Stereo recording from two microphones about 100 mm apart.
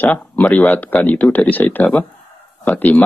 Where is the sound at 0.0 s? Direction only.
15° left (ahead or behind).